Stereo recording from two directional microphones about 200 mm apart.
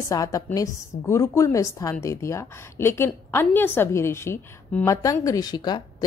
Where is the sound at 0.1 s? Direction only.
15° left (ahead or behind).